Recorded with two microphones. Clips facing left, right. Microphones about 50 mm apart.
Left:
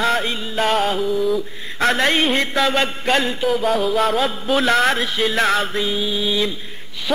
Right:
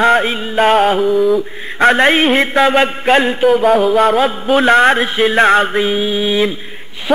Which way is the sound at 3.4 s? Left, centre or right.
Centre.